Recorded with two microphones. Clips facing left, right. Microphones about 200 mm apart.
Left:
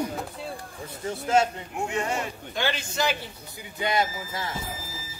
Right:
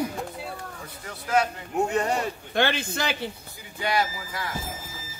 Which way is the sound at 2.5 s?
60° right (ahead or behind).